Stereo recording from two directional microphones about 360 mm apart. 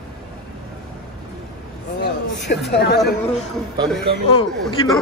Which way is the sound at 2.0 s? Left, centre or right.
Left.